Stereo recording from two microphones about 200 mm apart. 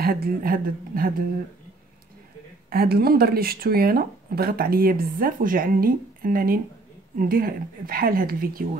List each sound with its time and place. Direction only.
0.0 s speech: 50° right (ahead or behind)
2.7 s speech: 50° right (ahead or behind)